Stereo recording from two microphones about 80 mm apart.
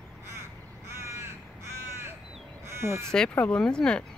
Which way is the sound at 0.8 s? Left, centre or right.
Right.